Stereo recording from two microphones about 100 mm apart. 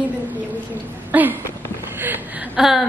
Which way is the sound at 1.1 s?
15° right (ahead or behind).